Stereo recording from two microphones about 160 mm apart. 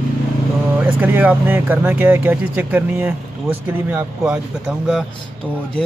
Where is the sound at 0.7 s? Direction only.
10° right (ahead or behind).